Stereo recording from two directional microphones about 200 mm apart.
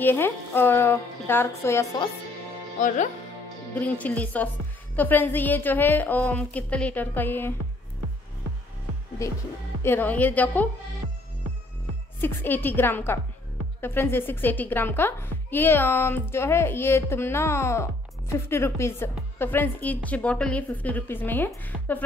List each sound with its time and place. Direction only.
0.0 s a woman's voice: 10° left (ahead or behind)
4.0 s a woman's voice: 10° left (ahead or behind)
9.2 s a woman's voice: 15° left (ahead or behind)
12.2 s a woman's voice: 10° left (ahead or behind)